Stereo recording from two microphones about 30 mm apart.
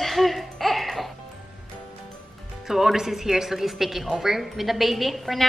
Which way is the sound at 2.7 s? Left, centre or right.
Centre.